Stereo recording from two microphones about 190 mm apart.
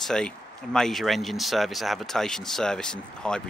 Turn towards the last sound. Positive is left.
turn(degrees=5)  # may be behind; listen again after turning